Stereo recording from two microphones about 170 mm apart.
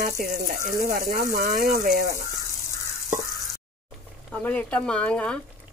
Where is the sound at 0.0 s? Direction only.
60° right (ahead or behind).